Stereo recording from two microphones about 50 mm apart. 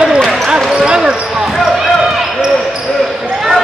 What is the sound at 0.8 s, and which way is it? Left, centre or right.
Basketball bounce, centre.